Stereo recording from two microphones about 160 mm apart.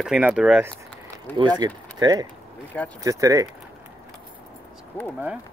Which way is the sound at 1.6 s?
25° right (ahead or behind).